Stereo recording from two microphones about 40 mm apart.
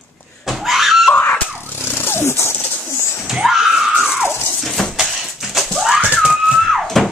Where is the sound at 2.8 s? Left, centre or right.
Left.